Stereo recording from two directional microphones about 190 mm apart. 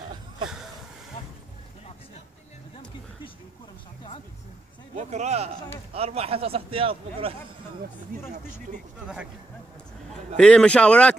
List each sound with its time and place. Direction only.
4.9 s a man's voice: 35° right (ahead or behind)
9.0 s speech: 5° right (ahead or behind)
10.3 s speech: 5° left (ahead or behind)